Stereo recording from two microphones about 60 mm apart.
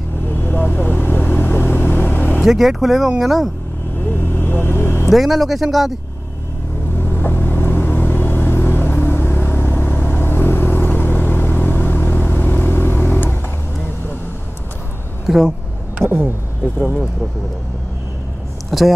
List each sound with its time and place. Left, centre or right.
0.3 s vehicle: left
2.4 s speech: centre
4.1 s vehicle: left
5.1 s speech: centre
7.0 s vehicle: left
15.2 s speech: centre
18.7 s speech: centre